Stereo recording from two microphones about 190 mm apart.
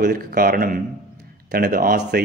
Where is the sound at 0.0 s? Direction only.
50° right (ahead or behind).